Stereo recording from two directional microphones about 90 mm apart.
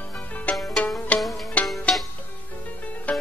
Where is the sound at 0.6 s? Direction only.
5° left (ahead or behind).